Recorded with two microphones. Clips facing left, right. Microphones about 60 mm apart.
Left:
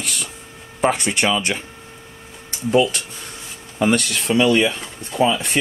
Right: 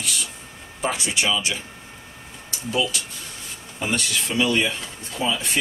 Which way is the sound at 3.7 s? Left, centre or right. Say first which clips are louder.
Left 7 dB; left.